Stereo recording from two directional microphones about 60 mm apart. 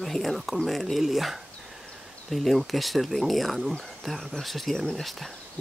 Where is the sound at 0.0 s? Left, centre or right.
Centre.